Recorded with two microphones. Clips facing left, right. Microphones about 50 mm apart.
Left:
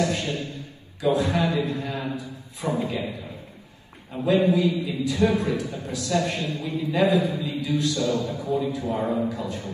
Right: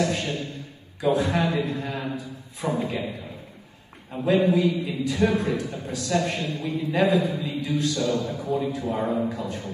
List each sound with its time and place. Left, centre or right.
0.0 s a man's voice: right
4.3 s a man's voice: right